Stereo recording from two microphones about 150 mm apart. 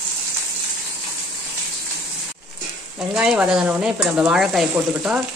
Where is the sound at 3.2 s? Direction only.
5° right (ahead or behind).